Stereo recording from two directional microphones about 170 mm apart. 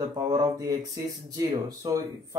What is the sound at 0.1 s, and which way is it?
Speech, 25° right (ahead or behind).